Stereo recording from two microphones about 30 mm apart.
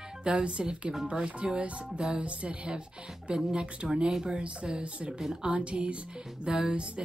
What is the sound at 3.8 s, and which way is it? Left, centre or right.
Speech, centre.